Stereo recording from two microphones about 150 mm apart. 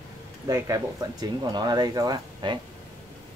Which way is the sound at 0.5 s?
25° right (ahead or behind).